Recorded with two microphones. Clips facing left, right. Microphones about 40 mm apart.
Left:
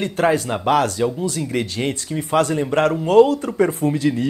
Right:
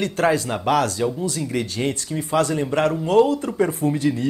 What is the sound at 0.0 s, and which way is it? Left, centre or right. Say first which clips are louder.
A man's voice: left 1 dB; left.